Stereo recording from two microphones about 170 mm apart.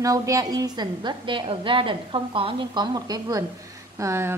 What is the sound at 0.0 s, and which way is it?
A woman's voice, 20° right (ahead or behind).